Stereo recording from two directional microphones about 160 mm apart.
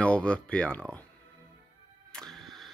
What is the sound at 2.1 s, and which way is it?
Music, 5° left (ahead or behind).